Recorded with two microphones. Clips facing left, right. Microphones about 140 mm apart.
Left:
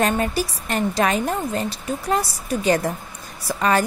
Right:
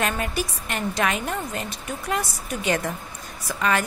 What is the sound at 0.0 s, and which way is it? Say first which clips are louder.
A woman's voice: left 5 dB; 35° left (ahead or behind).